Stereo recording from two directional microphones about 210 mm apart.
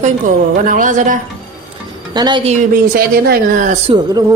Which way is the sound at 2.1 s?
20° right (ahead or behind).